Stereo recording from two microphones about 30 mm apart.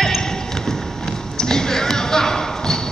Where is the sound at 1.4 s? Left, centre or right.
Left.